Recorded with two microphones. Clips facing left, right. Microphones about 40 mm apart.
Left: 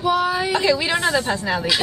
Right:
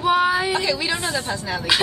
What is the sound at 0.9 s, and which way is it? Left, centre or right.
Speech, left.